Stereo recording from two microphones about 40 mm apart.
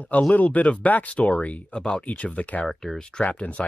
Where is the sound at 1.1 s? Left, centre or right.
Left.